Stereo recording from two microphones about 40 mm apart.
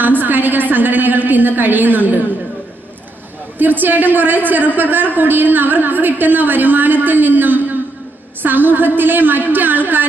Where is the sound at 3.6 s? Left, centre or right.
Right.